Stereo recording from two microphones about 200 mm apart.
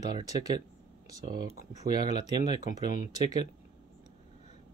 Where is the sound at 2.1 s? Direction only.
35° left (ahead or behind).